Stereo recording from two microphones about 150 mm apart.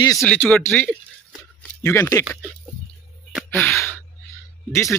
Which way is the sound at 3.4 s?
15° left (ahead or behind).